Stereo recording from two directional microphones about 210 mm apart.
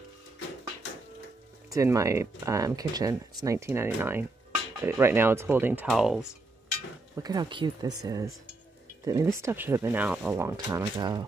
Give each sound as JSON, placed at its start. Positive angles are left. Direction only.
{"t": 1.7, "sound": "speech", "side_deg": -15}
{"t": 7.2, "sound": "speech", "side_deg": -20}